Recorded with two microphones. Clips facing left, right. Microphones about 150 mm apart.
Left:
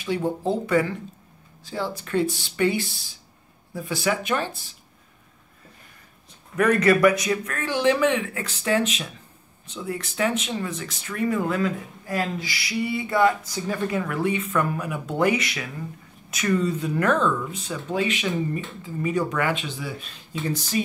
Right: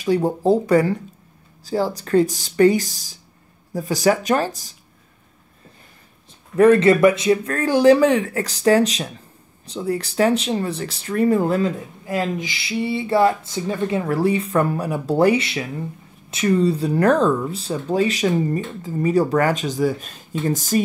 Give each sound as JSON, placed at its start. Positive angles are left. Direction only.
{"t": 0.0, "sound": "speech", "side_deg": -40}
{"t": 6.5, "sound": "speech", "side_deg": -30}
{"t": 12.1, "sound": "speech", "side_deg": -20}